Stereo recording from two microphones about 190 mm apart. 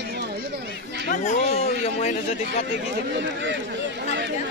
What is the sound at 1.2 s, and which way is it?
Speech, 35° left (ahead or behind).